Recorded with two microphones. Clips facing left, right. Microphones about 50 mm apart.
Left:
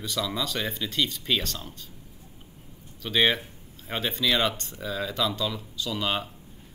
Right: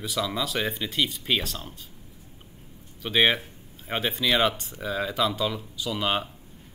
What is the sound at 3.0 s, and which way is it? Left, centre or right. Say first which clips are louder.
Speech: right 1 dB; centre.